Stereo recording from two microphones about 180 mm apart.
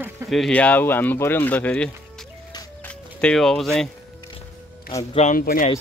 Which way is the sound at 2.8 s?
5° left (ahead or behind).